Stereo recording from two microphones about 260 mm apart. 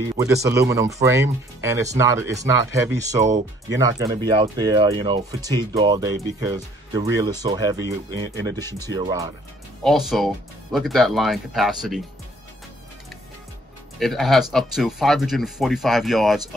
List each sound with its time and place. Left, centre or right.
0.2 s speech: centre
8.5 s speech: centre
8.9 s speech: centre
9.8 s speech: centre
13.9 s speech: centre